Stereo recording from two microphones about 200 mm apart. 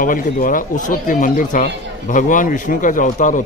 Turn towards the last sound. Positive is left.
turn(degrees=40)  # may be behind; listen again after turning